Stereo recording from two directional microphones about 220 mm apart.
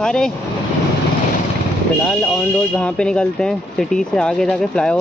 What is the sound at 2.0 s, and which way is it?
Speech, 5° left (ahead or behind).